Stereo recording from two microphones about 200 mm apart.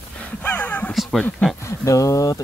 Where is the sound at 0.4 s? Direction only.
10° left (ahead or behind).